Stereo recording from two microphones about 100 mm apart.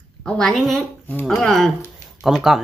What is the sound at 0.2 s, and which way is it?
A woman's voice, 5° left (ahead or behind).